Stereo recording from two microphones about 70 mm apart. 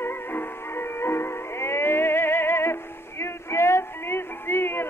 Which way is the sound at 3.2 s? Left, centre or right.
Left.